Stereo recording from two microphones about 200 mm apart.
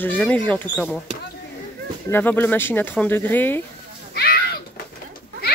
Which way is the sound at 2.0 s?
10° left (ahead or behind).